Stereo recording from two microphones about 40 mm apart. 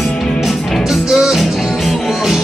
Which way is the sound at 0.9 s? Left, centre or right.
Centre.